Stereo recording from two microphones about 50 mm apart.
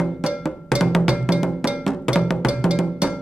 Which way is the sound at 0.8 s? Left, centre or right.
Centre.